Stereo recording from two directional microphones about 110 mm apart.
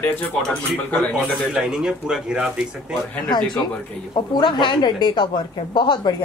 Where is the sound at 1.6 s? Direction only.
5° right (ahead or behind).